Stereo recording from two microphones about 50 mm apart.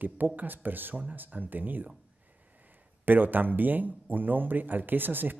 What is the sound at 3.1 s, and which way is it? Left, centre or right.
Speech, right.